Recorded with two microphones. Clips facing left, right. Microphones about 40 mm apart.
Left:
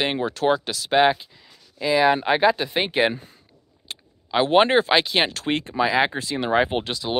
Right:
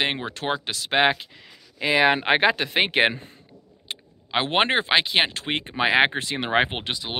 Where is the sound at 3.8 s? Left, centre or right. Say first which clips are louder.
Left 1 dB; right.